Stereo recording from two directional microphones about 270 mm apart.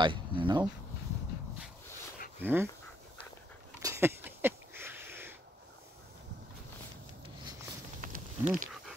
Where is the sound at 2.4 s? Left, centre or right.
Centre.